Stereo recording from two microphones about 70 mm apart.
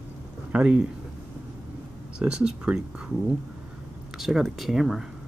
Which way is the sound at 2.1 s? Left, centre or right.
Centre.